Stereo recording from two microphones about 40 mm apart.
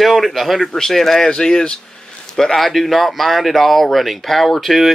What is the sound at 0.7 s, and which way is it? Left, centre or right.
Speech, centre.